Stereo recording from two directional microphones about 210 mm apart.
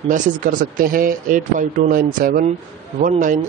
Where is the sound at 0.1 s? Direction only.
40° right (ahead or behind).